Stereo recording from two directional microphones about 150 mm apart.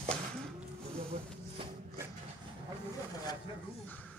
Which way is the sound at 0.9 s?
40° right (ahead or behind).